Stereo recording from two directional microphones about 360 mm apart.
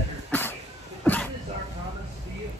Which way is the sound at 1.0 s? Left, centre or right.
Centre.